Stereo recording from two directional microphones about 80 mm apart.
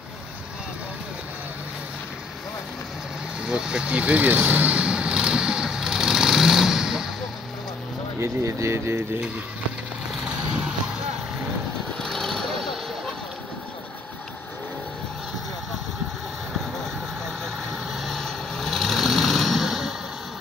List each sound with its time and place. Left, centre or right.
3.4 s vehicle: centre
8.2 s speech: right
10.2 s vehicle: centre
12.0 s vehicle: centre
17.9 s vehicle: centre